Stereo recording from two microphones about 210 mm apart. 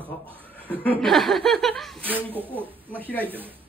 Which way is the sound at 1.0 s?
Centre (ahead or behind).